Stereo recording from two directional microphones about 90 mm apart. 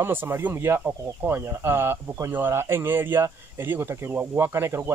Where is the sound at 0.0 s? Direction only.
25° right (ahead or behind).